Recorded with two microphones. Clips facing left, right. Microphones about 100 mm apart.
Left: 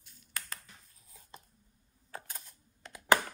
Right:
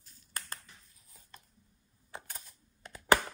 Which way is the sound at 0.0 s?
40° right (ahead or behind).